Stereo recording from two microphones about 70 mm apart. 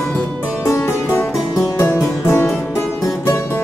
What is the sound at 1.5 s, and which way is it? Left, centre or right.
Music, left.